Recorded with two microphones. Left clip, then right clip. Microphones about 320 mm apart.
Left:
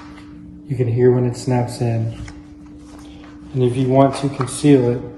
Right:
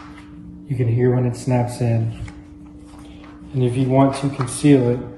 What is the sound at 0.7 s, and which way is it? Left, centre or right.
Speech, centre.